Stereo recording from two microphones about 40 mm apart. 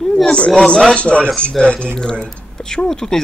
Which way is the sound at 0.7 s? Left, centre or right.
Left.